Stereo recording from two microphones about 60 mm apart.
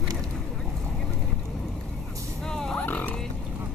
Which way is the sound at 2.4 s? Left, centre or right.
Centre.